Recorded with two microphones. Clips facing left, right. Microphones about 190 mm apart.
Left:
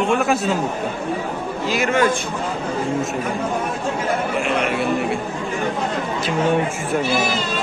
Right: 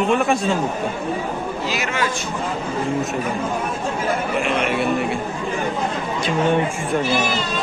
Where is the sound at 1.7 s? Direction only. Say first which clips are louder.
Left 8 dB; 50° left (ahead or behind).